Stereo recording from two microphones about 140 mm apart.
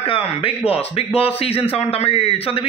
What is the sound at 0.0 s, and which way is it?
A man's voice, 40° left (ahead or behind).